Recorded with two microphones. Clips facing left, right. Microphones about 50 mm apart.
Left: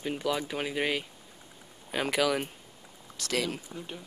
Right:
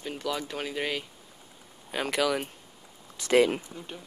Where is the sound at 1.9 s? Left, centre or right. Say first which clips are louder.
Even; centre.